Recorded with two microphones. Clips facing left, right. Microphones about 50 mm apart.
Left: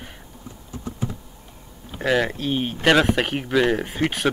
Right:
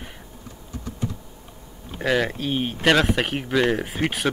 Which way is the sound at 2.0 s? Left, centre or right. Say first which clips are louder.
Left 1 dB; centre.